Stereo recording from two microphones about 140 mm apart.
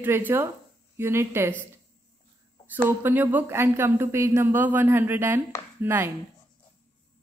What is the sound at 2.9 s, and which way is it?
Speech, 15° right (ahead or behind).